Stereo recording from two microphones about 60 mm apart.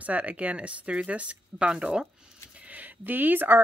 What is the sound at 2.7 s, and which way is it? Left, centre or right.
Speech, right.